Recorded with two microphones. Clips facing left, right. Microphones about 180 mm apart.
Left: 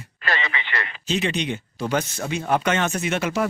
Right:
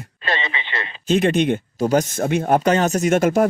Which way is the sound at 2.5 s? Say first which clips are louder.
Right 4 dB; 40° right (ahead or behind).